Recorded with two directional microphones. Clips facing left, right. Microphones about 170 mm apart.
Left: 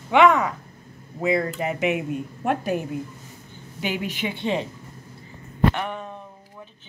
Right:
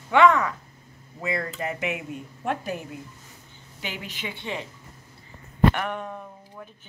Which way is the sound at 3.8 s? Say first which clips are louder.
Left 8 dB; 15° left (ahead or behind).